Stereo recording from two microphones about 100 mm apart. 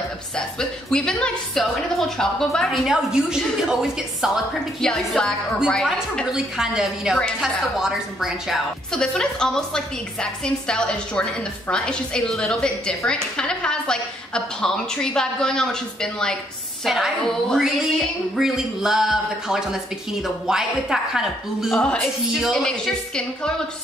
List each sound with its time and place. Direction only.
0.4 s a woman's voice: 5° left (ahead or behind)
4.8 s a woman's voice: 5° left (ahead or behind)
8.9 s a woman's voice: 10° left (ahead or behind)
21.7 s a woman's voice: 10° left (ahead or behind)
22.0 s a woman's voice: centre (ahead or behind)